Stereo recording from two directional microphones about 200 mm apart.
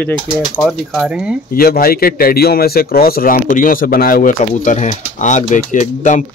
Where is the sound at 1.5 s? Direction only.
50° left (ahead or behind).